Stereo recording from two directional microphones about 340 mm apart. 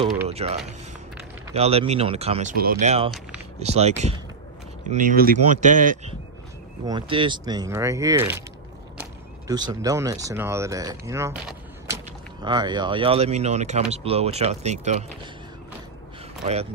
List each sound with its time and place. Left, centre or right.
0.3 s speech: centre
9.5 s speech: centre